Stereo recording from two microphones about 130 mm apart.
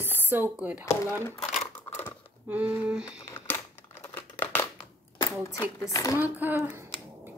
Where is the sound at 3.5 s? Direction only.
15° left (ahead or behind).